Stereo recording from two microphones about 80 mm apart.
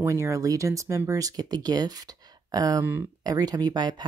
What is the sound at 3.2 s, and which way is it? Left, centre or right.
Speech, right.